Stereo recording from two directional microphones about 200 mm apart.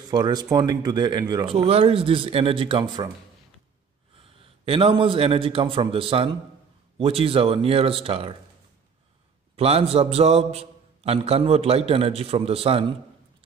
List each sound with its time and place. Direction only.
0.1 s speech: 20° right (ahead or behind)
4.2 s a man's voice: 30° right (ahead or behind)
9.6 s a man's voice: 30° right (ahead or behind)